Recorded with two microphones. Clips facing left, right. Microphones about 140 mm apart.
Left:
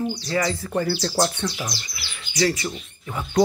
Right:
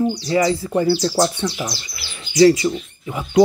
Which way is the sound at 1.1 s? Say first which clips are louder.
Right 4 dB; 5° right (ahead or behind).